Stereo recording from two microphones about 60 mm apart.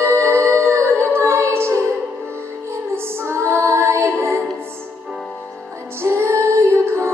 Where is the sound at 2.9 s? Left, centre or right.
Right.